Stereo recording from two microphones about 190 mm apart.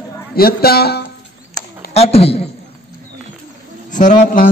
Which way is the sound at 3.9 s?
40° left (ahead or behind).